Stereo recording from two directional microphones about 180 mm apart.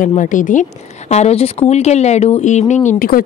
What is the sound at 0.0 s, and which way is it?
Speech, 45° left (ahead or behind).